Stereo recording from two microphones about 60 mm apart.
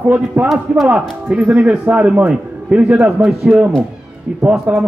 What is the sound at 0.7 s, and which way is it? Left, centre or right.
A man's voice, centre.